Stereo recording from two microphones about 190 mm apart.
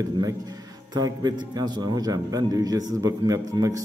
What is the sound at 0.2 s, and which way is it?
A man's voice, 20° right (ahead or behind).